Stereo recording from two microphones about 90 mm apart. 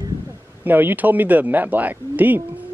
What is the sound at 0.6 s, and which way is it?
Speech, 20° right (ahead or behind).